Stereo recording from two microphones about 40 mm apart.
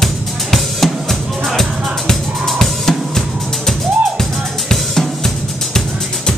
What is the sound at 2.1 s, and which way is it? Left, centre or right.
Music, centre.